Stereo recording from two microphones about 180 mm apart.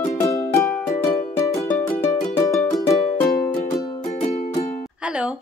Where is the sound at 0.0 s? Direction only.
15° left (ahead or behind).